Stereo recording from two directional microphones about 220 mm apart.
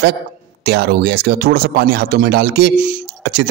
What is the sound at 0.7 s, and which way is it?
A man's voice, 45° right (ahead or behind).